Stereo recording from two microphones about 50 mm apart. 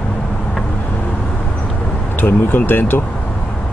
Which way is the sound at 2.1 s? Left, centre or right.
Left.